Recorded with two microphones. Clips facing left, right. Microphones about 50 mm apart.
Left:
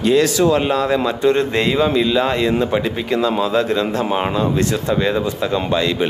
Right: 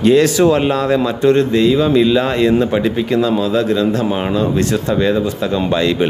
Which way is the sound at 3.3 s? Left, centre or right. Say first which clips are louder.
Right 2 dB; centre.